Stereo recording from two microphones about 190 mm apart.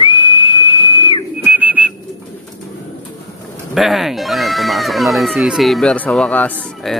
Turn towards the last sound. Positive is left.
turn(degrees=5)  # may be behind; listen again after turning